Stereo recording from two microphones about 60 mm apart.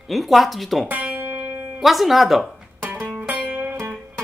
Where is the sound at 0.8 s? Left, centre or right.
Right.